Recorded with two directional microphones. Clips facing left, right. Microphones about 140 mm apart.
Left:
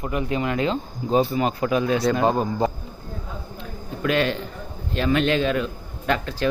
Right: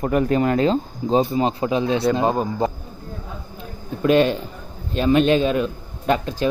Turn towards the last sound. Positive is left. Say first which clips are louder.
# right 4 dB
turn(degrees=-20)  # may be behind; listen again after turning